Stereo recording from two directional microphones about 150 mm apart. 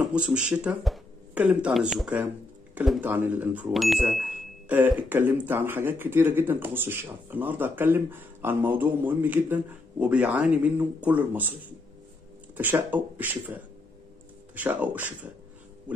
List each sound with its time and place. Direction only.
0.0 s speech: 5° right (ahead or behind)
3.7 s speech: centre (ahead or behind)